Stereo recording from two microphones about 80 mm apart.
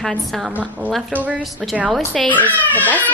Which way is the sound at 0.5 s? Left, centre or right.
Centre.